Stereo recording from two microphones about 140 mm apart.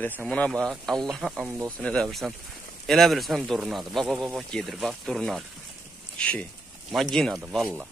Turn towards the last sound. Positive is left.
turn(degrees=0)  # may be behind; listen again after turning